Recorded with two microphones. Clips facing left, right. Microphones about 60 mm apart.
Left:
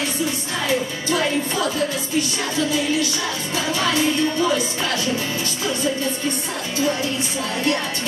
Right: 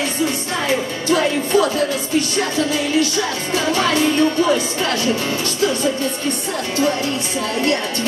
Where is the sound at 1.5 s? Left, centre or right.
Right.